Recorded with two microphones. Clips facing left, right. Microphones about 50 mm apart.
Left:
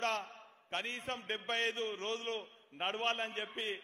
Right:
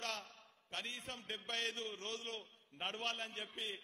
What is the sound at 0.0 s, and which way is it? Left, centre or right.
A man's voice, left.